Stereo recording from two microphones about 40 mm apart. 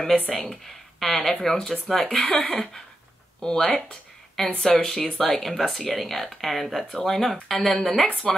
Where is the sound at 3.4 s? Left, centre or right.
Centre.